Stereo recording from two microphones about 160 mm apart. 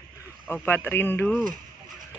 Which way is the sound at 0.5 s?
15° left (ahead or behind).